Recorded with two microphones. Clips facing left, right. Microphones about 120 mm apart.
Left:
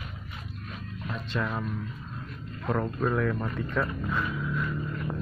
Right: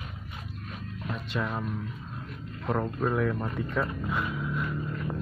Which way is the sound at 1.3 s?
10° right (ahead or behind).